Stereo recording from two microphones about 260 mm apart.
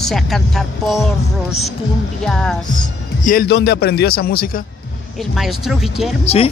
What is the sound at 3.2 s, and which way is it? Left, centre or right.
A man's voice, left.